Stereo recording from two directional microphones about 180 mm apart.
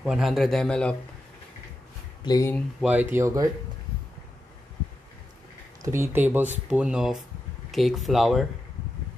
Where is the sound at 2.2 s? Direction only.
20° left (ahead or behind).